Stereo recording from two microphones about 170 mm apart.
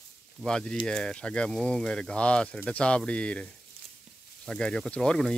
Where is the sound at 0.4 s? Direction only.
5° left (ahead or behind).